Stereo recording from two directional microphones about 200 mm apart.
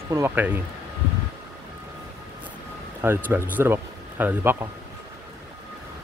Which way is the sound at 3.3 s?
10° right (ahead or behind).